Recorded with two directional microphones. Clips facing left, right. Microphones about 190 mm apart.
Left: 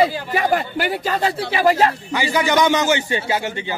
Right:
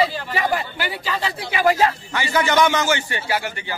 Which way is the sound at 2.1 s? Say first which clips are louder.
Left 1 dB; 15° left (ahead or behind).